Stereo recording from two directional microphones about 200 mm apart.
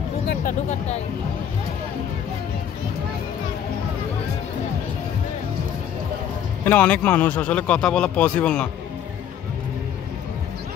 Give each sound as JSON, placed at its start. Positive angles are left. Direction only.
{"t": 0.3, "sound": "speech", "side_deg": 40}
{"t": 6.6, "sound": "a man's voice", "side_deg": 10}